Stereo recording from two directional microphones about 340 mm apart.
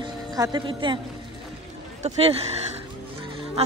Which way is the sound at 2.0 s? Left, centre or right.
Centre.